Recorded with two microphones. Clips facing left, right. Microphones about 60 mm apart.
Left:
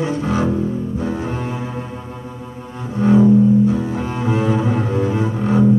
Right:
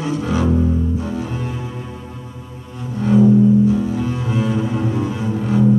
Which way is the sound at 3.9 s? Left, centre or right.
Left.